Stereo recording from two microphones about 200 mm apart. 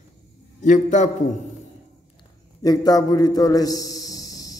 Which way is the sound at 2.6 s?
20° left (ahead or behind).